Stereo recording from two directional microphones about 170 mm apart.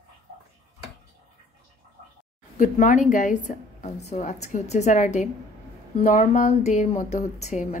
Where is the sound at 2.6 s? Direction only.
50° left (ahead or behind).